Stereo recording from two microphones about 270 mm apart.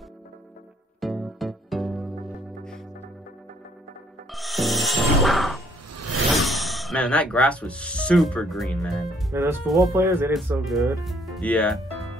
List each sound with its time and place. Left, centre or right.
1.0 s music: centre
4.3 s music: centre
5.9 s a sound: right
6.3 s speech: centre